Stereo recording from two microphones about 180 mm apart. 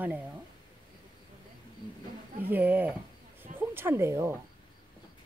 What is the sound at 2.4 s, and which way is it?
Speech, 10° right (ahead or behind).